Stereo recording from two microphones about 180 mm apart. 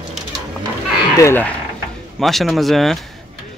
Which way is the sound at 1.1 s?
15° left (ahead or behind).